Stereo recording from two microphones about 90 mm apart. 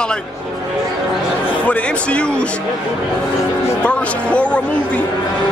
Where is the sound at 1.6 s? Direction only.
15° left (ahead or behind).